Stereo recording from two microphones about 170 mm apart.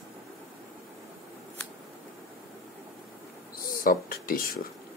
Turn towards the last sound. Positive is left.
turn(degrees=55)  # may be behind; listen again after turning